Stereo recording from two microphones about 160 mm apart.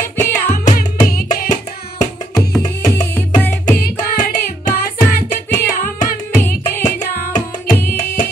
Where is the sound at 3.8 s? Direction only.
60° left (ahead or behind).